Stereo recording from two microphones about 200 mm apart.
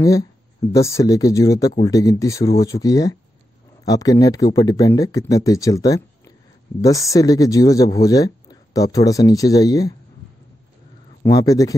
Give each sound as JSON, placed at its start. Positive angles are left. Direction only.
{"t": 0.0, "sound": "speech", "side_deg": 15}
{"t": 11.2, "sound": "speech", "side_deg": 15}